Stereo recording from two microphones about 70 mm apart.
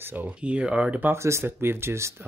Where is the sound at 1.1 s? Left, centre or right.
Right.